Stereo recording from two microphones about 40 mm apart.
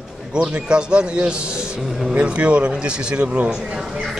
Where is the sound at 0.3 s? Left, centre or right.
Right.